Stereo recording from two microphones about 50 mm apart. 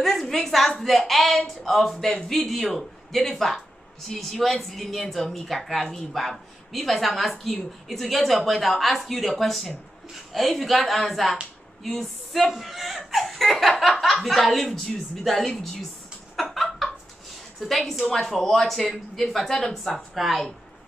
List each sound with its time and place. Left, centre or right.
0.0 s speech: centre
16.3 s a sound: centre
17.6 s speech: centre